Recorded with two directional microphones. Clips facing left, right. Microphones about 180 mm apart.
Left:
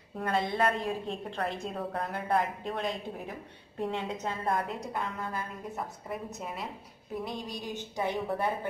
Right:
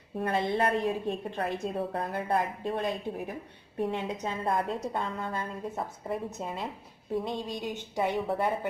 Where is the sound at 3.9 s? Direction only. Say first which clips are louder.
Left 2 dB; 15° right (ahead or behind).